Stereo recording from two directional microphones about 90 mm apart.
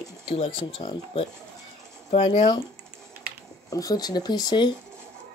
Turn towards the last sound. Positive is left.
turn(degrees=55)  # may be behind; listen again after turning